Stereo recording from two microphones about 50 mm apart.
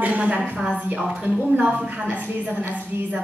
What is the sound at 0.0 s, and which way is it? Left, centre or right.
A woman's voice, right.